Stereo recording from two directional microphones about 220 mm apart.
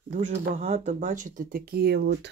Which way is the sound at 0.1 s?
35° right (ahead or behind).